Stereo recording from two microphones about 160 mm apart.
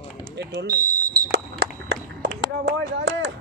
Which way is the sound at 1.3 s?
90° right.